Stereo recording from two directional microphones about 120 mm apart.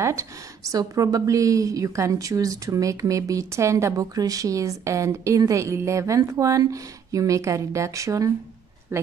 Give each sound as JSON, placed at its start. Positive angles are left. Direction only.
{"t": 0.0, "sound": "speech", "side_deg": -25}